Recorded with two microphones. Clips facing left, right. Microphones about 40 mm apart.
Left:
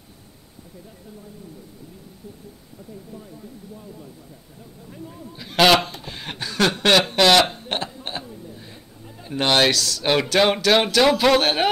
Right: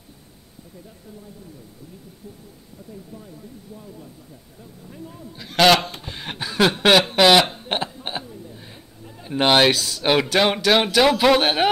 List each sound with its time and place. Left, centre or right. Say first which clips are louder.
3.7 s speech: even; centre
7.6 s a sound: right 2 dB; centre
9.2 s speech: right 2 dB; centre
10.2 s speech: even; centre